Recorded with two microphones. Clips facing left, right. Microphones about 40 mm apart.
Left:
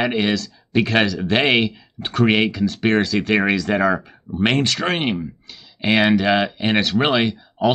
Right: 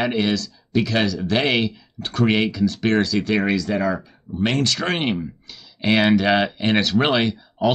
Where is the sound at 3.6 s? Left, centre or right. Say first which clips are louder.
Left 4 dB; left.